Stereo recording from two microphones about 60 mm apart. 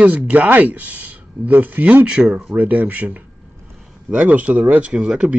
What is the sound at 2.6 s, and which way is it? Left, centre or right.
Speech, right.